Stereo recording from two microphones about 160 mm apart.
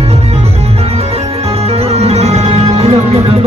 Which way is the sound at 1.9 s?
40° right (ahead or behind).